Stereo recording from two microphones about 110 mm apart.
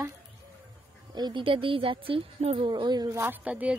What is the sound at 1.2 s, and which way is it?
Speech, 45° right (ahead or behind).